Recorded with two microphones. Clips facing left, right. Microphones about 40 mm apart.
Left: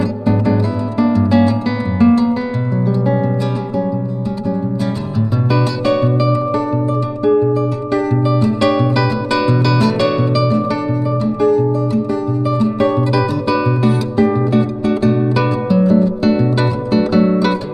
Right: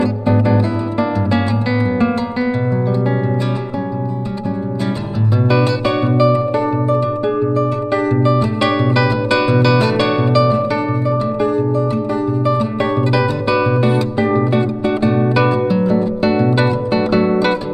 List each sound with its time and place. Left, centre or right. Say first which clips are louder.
0.0 s music: right 1 dB; centre
2.0 s guitar: left 5 dB; centre
5.5 s music: even; centre